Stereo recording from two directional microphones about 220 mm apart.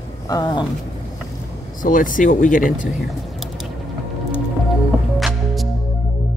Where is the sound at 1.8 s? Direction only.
40° left (ahead or behind).